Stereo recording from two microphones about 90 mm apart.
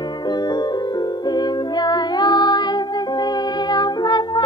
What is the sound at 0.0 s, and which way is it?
Music, 55° left (ahead or behind).